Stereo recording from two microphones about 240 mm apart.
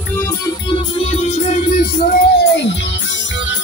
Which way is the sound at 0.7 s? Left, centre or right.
Left.